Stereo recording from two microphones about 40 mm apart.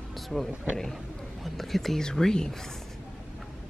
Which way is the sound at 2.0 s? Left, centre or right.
Centre.